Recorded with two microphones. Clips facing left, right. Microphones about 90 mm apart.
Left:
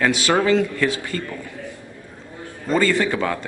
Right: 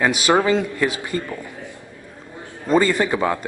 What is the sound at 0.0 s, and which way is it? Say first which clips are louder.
A man's voice: right 1 dB; 20° right (ahead or behind).